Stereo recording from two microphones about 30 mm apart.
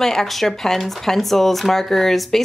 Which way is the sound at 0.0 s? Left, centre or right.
Centre.